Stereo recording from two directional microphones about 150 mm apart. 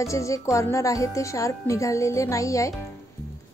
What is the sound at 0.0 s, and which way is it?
Speech, 20° left (ahead or behind).